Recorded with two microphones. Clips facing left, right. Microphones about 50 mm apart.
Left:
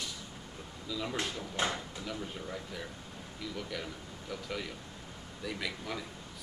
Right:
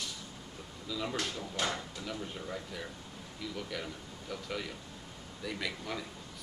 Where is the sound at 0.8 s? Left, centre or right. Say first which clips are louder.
Even; centre.